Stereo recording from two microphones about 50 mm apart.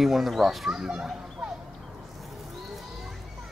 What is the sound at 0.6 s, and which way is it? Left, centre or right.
Speech, centre.